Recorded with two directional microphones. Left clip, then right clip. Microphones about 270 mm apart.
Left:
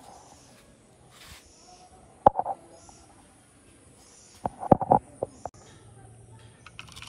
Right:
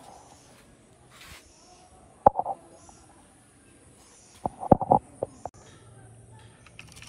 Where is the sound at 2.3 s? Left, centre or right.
Centre.